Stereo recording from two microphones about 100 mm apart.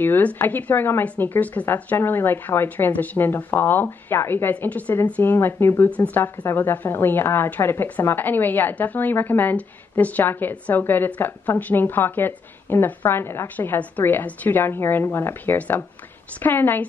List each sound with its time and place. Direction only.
0.0 s a woman's voice: 20° left (ahead or behind)